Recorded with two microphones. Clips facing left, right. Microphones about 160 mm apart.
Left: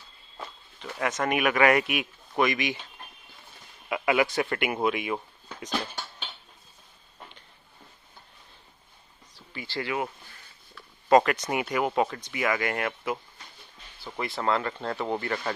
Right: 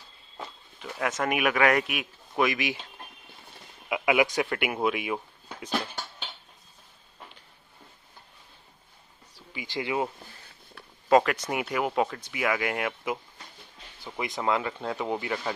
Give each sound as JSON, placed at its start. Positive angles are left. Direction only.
{"t": 0.7, "sound": "a man's voice", "side_deg": -5}
{"t": 3.9, "sound": "speech", "side_deg": -10}
{"t": 9.3, "sound": "speech", "side_deg": -10}
{"t": 11.1, "sound": "speech", "side_deg": 0}